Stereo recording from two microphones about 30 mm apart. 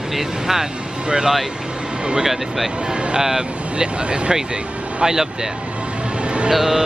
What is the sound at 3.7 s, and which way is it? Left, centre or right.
Speech, right.